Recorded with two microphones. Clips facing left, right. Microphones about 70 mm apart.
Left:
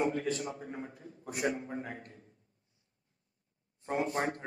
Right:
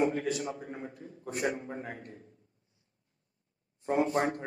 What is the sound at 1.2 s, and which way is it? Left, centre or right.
Speech, right.